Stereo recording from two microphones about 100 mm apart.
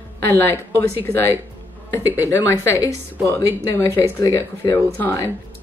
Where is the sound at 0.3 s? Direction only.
20° left (ahead or behind).